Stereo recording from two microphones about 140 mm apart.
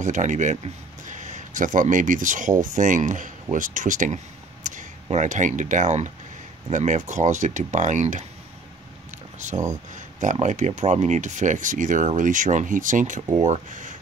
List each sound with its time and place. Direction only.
0.0 s speech: 60° right (ahead or behind)
4.6 s a sound: 60° right (ahead or behind)
5.1 s speech: 60° right (ahead or behind)
9.9 s speech: 60° right (ahead or behind)